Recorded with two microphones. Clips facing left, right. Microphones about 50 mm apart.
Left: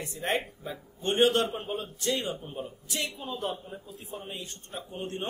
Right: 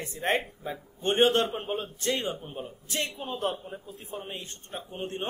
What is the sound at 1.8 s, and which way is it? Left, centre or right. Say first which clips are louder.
Speech: left 1 dB; right.